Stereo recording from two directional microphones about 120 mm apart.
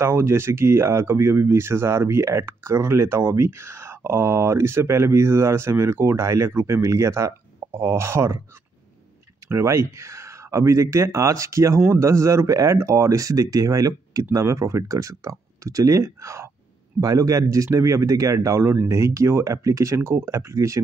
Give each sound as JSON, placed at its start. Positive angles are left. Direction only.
{"t": 0.0, "sound": "speech", "side_deg": -20}
{"t": 9.5, "sound": "speech", "side_deg": -25}